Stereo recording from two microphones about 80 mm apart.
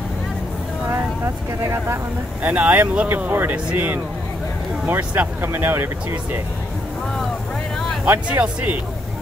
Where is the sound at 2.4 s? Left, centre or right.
Centre.